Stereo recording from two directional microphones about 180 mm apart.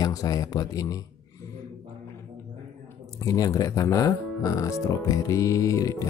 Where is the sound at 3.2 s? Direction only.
20° left (ahead or behind).